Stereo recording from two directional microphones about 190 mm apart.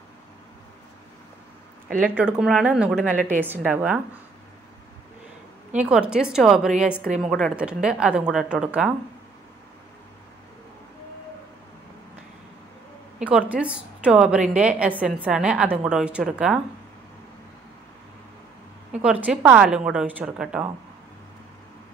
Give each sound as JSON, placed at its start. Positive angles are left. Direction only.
{"t": 2.0, "sound": "a woman's voice", "side_deg": -5}
{"t": 5.8, "sound": "a woman's voice", "side_deg": -5}
{"t": 13.2, "sound": "a woman's voice", "side_deg": -5}
{"t": 18.9, "sound": "a woman's voice", "side_deg": -5}